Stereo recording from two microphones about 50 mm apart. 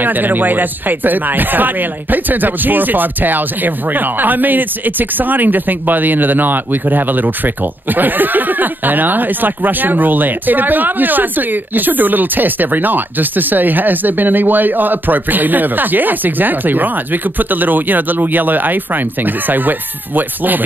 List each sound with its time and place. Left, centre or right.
0.0 s speech: right